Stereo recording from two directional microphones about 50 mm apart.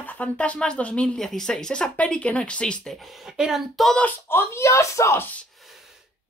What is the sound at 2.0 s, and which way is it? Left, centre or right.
Speech, left.